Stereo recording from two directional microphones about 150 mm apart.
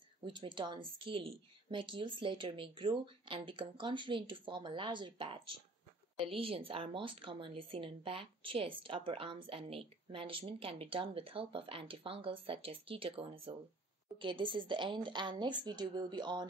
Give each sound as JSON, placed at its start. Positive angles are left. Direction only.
{"t": 0.2, "sound": "speech", "side_deg": -30}